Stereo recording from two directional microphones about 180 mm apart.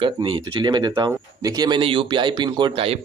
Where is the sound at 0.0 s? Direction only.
30° right (ahead or behind).